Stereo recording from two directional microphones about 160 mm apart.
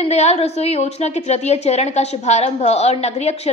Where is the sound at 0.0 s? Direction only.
45° left (ahead or behind).